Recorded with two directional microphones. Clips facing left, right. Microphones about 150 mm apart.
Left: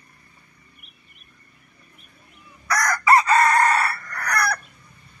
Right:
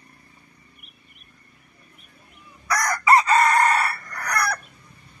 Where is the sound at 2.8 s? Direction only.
20° right (ahead or behind).